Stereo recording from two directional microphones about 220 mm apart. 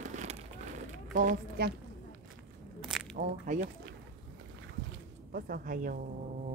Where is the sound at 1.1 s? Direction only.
35° right (ahead or behind).